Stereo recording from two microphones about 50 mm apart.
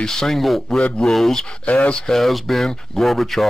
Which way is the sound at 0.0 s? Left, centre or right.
Centre.